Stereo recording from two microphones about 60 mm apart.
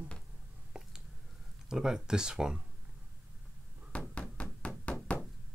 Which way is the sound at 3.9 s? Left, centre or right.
Centre.